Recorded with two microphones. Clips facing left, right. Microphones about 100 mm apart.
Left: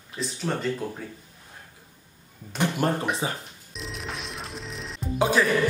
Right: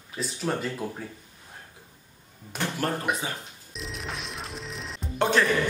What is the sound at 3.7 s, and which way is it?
Music, centre (ahead or behind).